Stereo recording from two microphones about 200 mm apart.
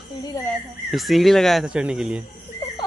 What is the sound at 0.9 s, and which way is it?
Speech, centre (ahead or behind).